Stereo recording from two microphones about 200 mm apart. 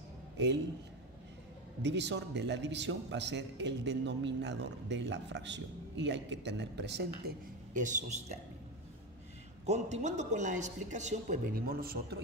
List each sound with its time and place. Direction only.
1.8 s a man's voice: 60° right (ahead or behind); by 8.4 s 35° right (ahead or behind)
9.7 s a man's voice: 35° right (ahead or behind)